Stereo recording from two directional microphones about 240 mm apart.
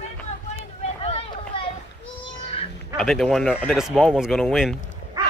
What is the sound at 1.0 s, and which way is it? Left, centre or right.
Vehicle, left.